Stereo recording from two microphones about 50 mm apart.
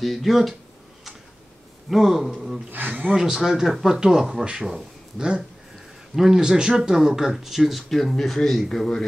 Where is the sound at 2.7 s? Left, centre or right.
Right.